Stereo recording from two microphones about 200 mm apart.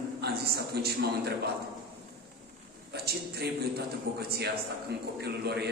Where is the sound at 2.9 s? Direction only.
50° right (ahead or behind).